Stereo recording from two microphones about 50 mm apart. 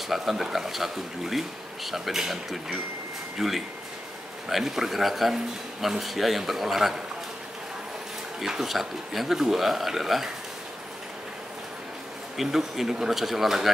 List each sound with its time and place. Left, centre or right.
0.1 s speech: centre
8.4 s speech: centre
12.4 s speech: centre